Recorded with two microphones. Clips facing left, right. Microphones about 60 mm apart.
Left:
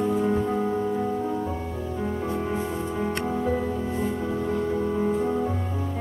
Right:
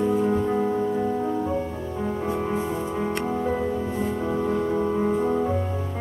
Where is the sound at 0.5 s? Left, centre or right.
Centre.